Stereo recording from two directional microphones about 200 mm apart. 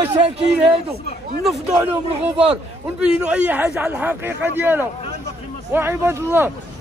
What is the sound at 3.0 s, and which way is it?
Speech, 5° right (ahead or behind).